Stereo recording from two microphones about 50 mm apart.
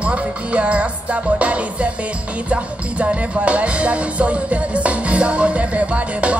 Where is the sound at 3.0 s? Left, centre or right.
Right.